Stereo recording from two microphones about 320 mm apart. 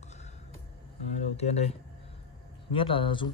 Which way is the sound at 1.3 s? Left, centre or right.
Centre.